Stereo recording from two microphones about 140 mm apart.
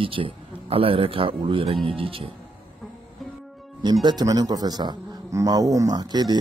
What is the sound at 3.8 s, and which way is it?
A man's voice, 30° right (ahead or behind).